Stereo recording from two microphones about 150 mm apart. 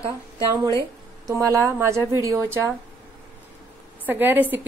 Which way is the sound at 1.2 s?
20° right (ahead or behind).